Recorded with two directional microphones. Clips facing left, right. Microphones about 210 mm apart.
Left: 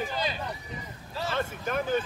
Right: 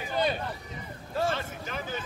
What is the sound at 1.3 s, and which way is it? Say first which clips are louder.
Vehicle: left 5 dB; 55° left (ahead or behind).